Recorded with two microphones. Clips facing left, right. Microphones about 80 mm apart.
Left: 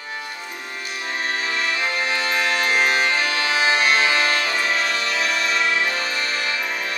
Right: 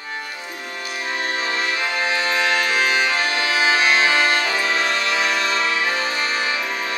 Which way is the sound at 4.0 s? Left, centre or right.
Right.